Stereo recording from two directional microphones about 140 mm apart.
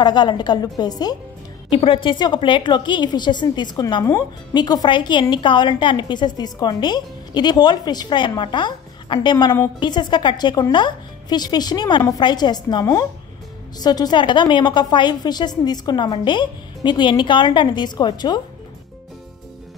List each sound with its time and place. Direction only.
0.0 s a woman's voice: 30° left (ahead or behind)
1.7 s a woman's voice: 40° left (ahead or behind)